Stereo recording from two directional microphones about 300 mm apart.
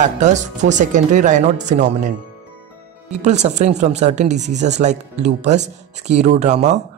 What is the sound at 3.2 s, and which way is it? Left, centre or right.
Speech, right.